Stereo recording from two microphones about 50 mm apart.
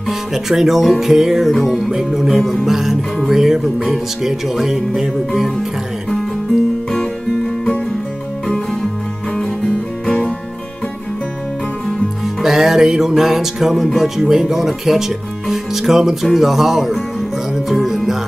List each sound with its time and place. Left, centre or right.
0.3 s music: centre
3.3 s speech: centre
10.0 s music: left
12.4 s music: centre
13.8 s speech: centre
16.3 s music: centre